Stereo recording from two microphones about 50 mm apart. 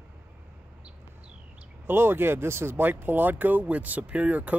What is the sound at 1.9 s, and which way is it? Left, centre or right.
Speech, right.